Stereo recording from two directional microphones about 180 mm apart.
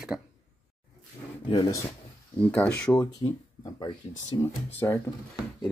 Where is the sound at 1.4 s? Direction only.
30° left (ahead or behind).